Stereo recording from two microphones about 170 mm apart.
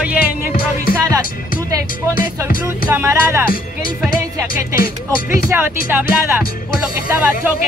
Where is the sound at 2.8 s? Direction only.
10° right (ahead or behind).